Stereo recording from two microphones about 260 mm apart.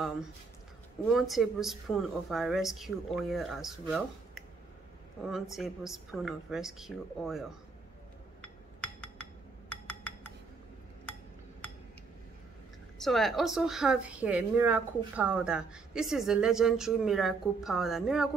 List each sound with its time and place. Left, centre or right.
1.1 s speech: centre
8.4 s chink: centre
13.0 s speech: centre